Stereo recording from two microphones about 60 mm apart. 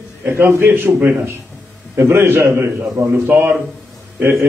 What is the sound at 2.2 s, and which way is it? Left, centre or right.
A man's voice, right.